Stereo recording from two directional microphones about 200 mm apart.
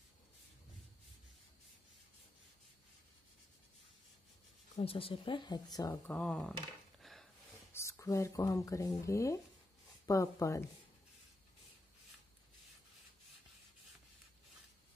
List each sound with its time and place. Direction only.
4.7 s speech: 30° left (ahead or behind)
6.1 s speech: 5° left (ahead or behind)
7.0 s a sound: centre (ahead or behind)
7.7 s speech: 15° left (ahead or behind)